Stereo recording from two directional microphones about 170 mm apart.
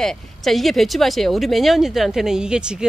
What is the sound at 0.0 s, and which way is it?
Speech, centre (ahead or behind).